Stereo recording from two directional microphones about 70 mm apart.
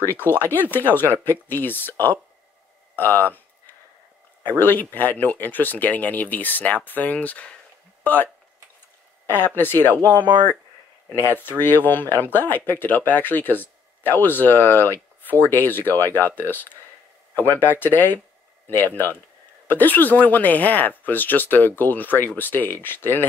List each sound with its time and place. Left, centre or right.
0.0 s speech: left
3.0 s a sound: left
4.4 s speech: left
9.3 s speech: left
11.1 s speech: left
19.7 s speech: left